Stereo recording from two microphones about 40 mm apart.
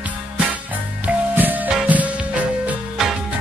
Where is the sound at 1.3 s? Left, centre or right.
Right.